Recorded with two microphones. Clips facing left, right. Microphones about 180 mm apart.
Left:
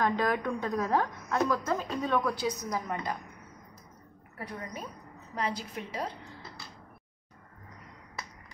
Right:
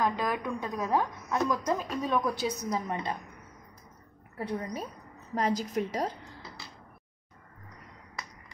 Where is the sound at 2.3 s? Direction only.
25° right (ahead or behind).